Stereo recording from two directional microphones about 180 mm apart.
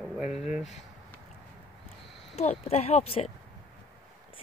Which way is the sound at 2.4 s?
35° left (ahead or behind).